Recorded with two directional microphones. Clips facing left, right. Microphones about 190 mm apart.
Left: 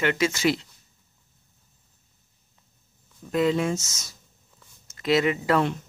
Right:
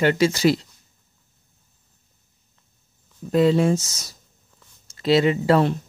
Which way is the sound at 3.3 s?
35° right (ahead or behind).